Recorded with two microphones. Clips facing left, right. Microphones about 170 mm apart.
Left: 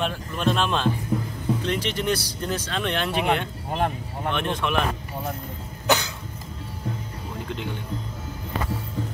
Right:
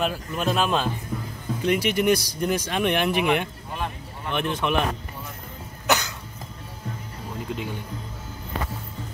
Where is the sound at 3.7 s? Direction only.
55° left (ahead or behind).